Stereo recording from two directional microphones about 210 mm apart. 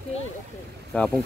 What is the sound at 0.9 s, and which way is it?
Speech, 5° left (ahead or behind).